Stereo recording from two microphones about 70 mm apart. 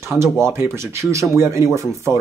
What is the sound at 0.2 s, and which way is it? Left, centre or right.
Speech, right.